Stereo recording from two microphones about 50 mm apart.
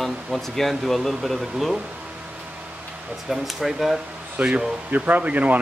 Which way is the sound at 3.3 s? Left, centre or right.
Centre.